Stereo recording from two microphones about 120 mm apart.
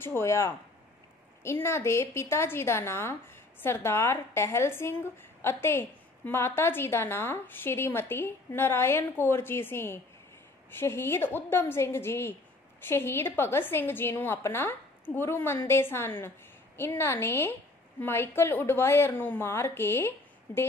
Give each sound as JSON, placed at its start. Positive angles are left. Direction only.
{"t": 0.0, "sound": "a woman's voice", "side_deg": 20}